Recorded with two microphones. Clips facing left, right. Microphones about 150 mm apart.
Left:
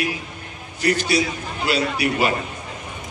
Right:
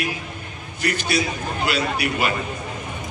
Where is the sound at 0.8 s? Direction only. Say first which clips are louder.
Left 3 dB; 35° left (ahead or behind).